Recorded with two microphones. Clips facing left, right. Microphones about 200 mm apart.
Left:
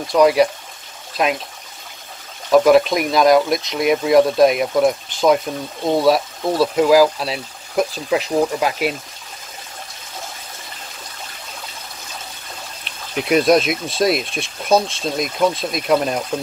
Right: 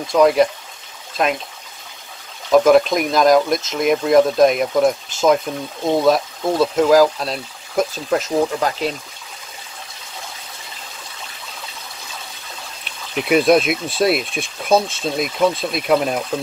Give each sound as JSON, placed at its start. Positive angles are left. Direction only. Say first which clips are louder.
{"t": 0.0, "sound": "speech", "louder": "even", "side_deg": 0}
{"t": 2.5, "sound": "speech", "louder": "even", "side_deg": 0}
{"t": 8.5, "sound": "speech", "louder": "left 1 dB", "side_deg": 10}
{"t": 13.2, "sound": "speech", "louder": "even", "side_deg": 0}